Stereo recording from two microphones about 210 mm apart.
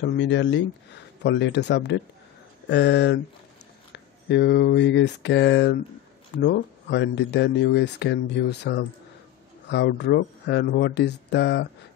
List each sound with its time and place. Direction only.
0.0 s speech: 60° left (ahead or behind)
3.9 s a sound: 55° left (ahead or behind)
6.3 s speech: 55° left (ahead or behind)